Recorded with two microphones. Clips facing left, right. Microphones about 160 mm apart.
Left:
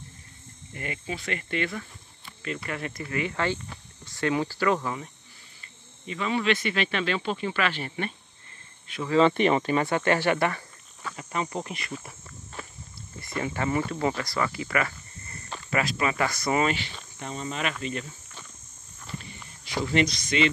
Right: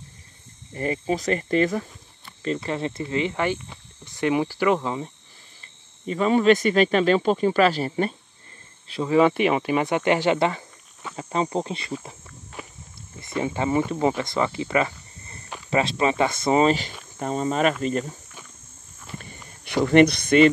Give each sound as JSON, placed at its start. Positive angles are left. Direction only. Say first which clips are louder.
{"t": 0.7, "sound": "speech", "louder": "right 10 dB", "side_deg": -35}
{"t": 6.0, "sound": "speech", "louder": "right 8 dB", "side_deg": -40}
{"t": 9.1, "sound": "speech", "louder": "right 2 dB", "side_deg": -10}
{"t": 12.6, "sound": "walk", "louder": "right 2 dB", "side_deg": -15}
{"t": 13.4, "sound": "speech", "louder": "right 4 dB", "side_deg": -20}
{"t": 15.7, "sound": "speech", "louder": "right 5 dB", "side_deg": -25}
{"t": 17.2, "sound": "speech", "louder": "right 9 dB", "side_deg": -45}
{"t": 19.6, "sound": "speech", "louder": "right 9 dB", "side_deg": -60}